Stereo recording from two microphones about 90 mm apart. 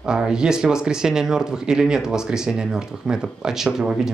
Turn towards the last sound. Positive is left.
turn(degrees=-5)  # may be behind; listen again after turning